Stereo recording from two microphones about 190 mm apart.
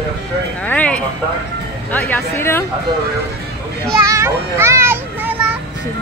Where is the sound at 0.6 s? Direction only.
5° left (ahead or behind).